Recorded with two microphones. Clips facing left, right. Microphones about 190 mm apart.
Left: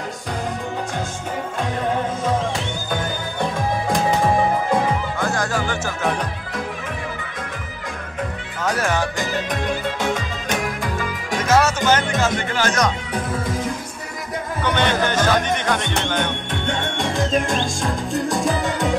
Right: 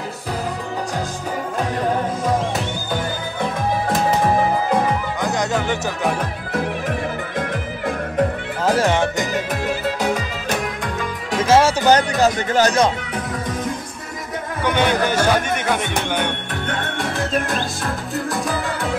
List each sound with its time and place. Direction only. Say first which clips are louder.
3.9 s music: even; 5° right (ahead or behind)
5.2 s music: right 3 dB; 20° right (ahead or behind)
8.7 s speech: right 4 dB; 25° right (ahead or behind)
9.5 s music: right 1 dB; 5° right (ahead or behind)
11.3 s music: right 3 dB; 30° right (ahead or behind)
12.4 s speech: right 5 dB; 40° right (ahead or behind)
14.6 s speech: right 2 dB; 10° right (ahead or behind)
17.5 s music: left 1 dB; 15° left (ahead or behind)